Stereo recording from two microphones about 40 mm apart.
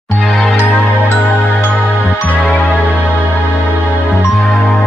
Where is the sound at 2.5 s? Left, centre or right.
Left.